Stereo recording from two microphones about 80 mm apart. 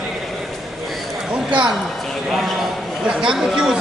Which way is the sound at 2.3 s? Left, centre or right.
Centre.